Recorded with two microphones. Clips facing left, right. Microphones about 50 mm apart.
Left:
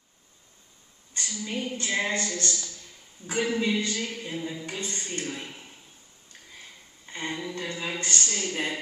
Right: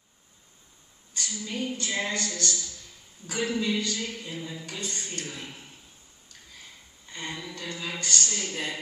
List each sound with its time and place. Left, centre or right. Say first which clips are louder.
1.4 s a woman's voice: left 1 dB; left
7.1 s a woman's voice: left 4 dB; left